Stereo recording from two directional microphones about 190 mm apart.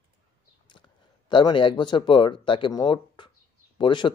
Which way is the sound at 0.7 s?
25° left (ahead or behind).